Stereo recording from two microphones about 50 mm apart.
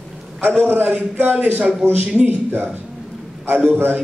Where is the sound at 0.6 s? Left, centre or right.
Right.